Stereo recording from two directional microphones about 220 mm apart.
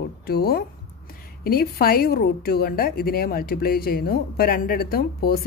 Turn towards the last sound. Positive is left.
turn(degrees=45)  # may be behind; listen again after turning